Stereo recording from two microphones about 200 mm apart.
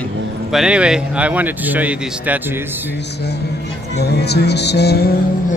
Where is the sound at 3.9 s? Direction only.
55° left (ahead or behind).